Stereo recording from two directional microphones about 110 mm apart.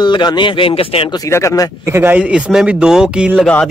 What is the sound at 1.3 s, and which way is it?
Speech, 30° left (ahead or behind).